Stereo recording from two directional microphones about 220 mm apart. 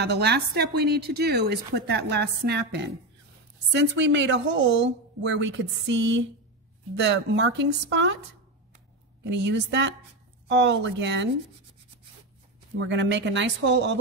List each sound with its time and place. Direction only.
0.0 s a woman's voice: 50° right (ahead or behind)
9.2 s a woman's voice: 50° right (ahead or behind)
12.7 s a woman's voice: 55° right (ahead or behind)